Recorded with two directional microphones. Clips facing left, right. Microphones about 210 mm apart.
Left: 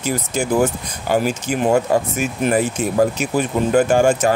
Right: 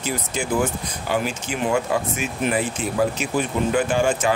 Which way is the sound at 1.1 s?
45° left (ahead or behind).